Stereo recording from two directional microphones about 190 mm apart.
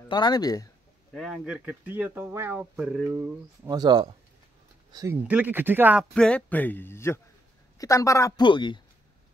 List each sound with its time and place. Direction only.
0.1 s speech: 20° left (ahead or behind)
1.1 s speech: centre (ahead or behind)
3.6 s speech: 20° right (ahead or behind)
6.1 s a woman's voice: 5° left (ahead or behind); by 8.8 s 25° left (ahead or behind)